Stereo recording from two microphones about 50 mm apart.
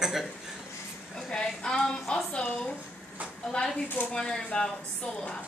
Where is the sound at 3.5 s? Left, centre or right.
Centre.